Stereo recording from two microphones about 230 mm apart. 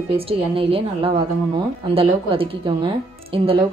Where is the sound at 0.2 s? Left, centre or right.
Right.